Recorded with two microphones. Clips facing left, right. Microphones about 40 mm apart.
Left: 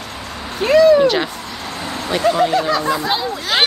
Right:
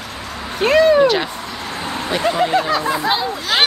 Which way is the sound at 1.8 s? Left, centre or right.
Centre.